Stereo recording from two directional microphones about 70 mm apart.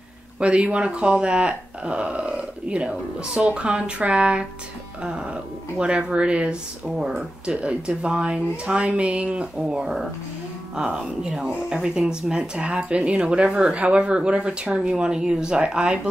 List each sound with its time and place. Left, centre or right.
0.4 s speech: centre